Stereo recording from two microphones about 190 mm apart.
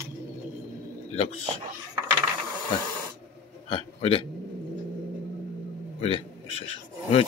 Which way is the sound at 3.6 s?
30° left (ahead or behind).